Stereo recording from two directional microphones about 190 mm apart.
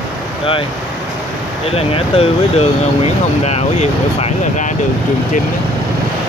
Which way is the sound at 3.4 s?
35° left (ahead or behind).